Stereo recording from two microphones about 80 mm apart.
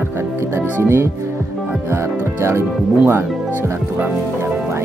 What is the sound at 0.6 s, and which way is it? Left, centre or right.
Speech, right.